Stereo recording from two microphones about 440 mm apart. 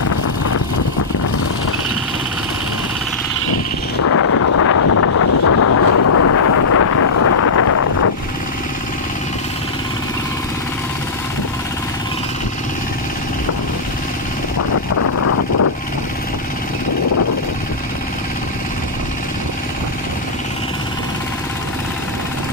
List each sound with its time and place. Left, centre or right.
4.0 s wind noise: left
14.7 s vehicle: left